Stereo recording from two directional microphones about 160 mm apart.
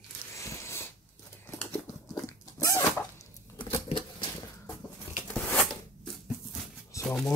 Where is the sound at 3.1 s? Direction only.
35° left (ahead or behind).